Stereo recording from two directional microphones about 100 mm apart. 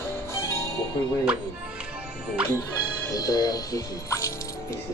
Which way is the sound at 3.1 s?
40° left (ahead or behind).